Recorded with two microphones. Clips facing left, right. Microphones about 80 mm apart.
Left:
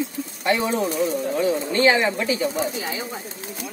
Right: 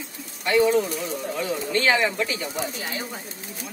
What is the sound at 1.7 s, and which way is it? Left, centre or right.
Speech, left.